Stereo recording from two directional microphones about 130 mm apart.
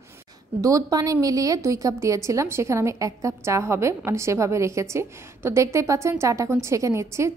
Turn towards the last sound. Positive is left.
turn(degrees=-20)  # may be behind; listen again after turning